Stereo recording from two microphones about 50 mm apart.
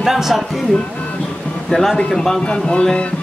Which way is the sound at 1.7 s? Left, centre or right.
Centre.